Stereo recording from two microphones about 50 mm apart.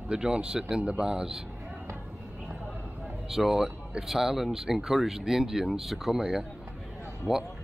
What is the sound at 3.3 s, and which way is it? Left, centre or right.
Speech, centre.